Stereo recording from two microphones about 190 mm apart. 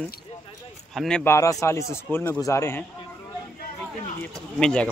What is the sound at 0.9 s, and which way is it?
Speech, 5° left (ahead or behind).